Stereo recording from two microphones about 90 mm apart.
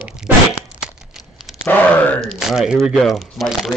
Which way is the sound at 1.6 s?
15° left (ahead or behind).